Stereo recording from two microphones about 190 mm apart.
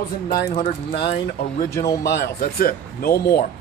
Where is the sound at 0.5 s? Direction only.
50° left (ahead or behind).